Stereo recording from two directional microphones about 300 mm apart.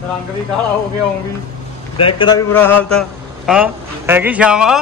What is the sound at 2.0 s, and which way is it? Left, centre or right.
Speech, centre.